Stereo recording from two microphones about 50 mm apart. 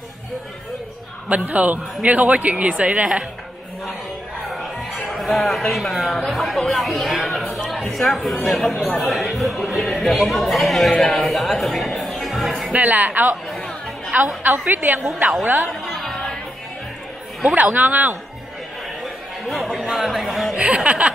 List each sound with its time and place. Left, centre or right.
1.3 s a woman's voice: right
4.5 s speech: centre
12.7 s a woman's voice: right
13.5 s chatter: centre
14.1 s a woman's voice: right
15.7 s music: centre
16.0 s music: centre
17.7 s a woman's voice: right
19.4 s speech: centre
20.5 s speech: right